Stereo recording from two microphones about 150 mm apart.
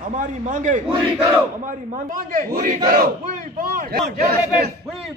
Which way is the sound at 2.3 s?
60° right (ahead or behind).